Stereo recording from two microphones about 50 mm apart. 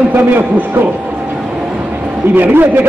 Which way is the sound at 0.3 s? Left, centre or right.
Right.